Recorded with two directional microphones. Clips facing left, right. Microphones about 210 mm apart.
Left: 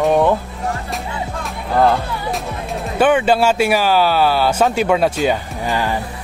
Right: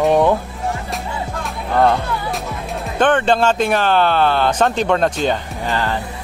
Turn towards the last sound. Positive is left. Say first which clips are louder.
# left 1 dB
turn(degrees=10)  # may be behind; listen again after turning